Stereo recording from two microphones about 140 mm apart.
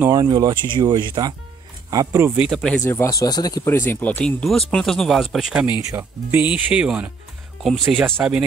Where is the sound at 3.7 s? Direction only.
15° left (ahead or behind); by 5.8 s 5° right (ahead or behind).